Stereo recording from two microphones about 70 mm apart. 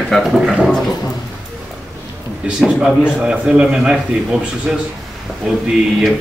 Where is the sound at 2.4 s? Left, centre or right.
Centre.